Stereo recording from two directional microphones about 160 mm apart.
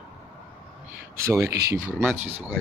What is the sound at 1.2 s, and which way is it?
Speech, 20° right (ahead or behind).